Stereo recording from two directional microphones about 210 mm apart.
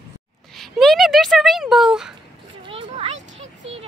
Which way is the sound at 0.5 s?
Centre (ahead or behind).